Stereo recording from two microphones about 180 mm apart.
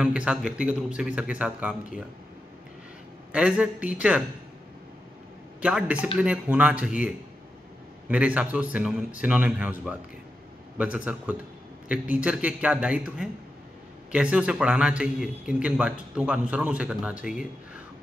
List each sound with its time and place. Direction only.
0.0 s speech: 5° right (ahead or behind)
3.3 s a man's voice: 5° right (ahead or behind)
5.6 s a man's voice: 5° right (ahead or behind)
8.1 s a man's voice: 10° right (ahead or behind)